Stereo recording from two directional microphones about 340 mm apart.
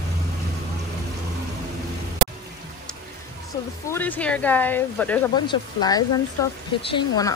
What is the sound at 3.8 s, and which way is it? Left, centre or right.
Speech, centre.